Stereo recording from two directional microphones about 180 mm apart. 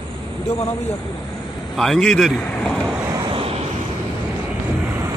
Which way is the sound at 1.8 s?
5° left (ahead or behind).